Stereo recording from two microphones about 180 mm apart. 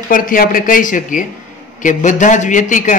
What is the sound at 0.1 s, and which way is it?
A man's voice, 50° left (ahead or behind).